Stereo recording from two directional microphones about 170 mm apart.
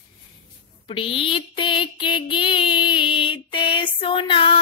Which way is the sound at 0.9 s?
30° left (ahead or behind).